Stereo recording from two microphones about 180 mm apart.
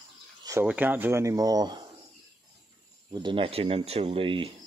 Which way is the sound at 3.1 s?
25° right (ahead or behind).